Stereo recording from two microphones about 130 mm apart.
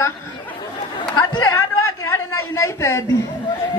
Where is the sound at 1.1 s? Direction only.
35° left (ahead or behind).